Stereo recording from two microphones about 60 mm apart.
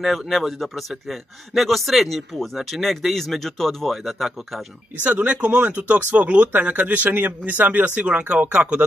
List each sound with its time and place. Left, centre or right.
0.3 s a man's voice: centre
5.0 s speech: right